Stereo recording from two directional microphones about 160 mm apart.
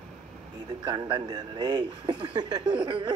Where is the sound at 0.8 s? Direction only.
30° right (ahead or behind).